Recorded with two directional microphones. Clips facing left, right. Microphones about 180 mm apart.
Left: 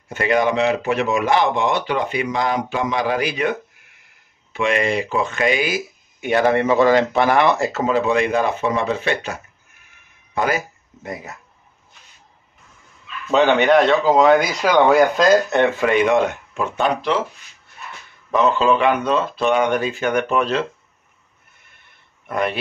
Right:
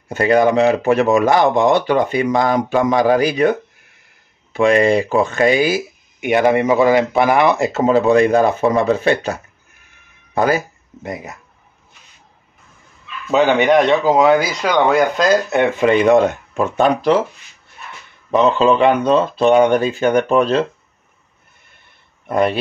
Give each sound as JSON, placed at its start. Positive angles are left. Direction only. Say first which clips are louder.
{"t": 0.1, "sound": "speech", "louder": "right 5 dB", "side_deg": -35}
{"t": 6.2, "sound": "speech", "louder": "right 3 dB", "side_deg": -15}
{"t": 7.8, "sound": "speech", "louder": "right 7 dB", "side_deg": -35}
{"t": 11.0, "sound": "speech", "louder": "right 3 dB", "side_deg": -20}
{"t": 13.5, "sound": "speech", "louder": "right 1 dB", "side_deg": -15}
{"t": 14.3, "sound": "speech", "louder": "even", "side_deg": 0}
{"t": 15.6, "sound": "speech", "louder": "right 2 dB", "side_deg": -15}
{"t": 16.5, "sound": "speech", "louder": "right 5 dB", "side_deg": -40}
{"t": 18.3, "sound": "speech", "louder": "right 3 dB", "side_deg": -30}
{"t": 22.3, "sound": "speech", "louder": "right 6 dB", "side_deg": -35}